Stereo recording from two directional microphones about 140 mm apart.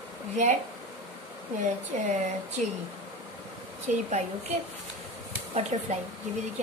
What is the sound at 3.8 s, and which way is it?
Speech, 55° right (ahead or behind).